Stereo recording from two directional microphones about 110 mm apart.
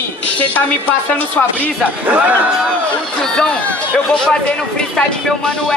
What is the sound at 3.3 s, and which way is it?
Speech, 10° left (ahead or behind).